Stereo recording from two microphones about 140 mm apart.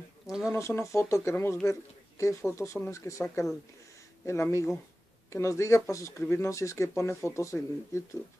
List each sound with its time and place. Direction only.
0.5 s speech: 20° left (ahead or behind)